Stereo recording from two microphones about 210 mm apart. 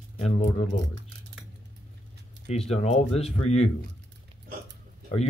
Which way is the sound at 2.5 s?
30° left (ahead or behind).